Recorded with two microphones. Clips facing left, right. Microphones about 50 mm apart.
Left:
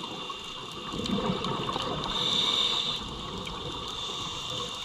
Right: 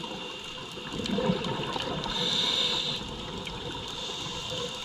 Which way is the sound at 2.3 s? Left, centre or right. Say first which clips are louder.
Left 1 dB; right.